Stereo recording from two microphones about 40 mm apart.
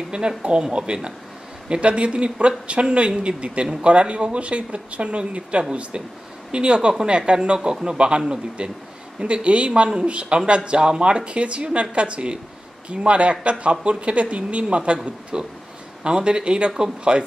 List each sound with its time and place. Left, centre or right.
0.4 s speech: right